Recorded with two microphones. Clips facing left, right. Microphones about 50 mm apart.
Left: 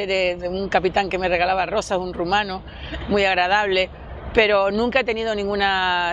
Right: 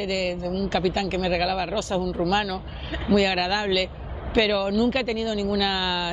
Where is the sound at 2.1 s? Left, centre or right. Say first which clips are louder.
Left 2 dB; left.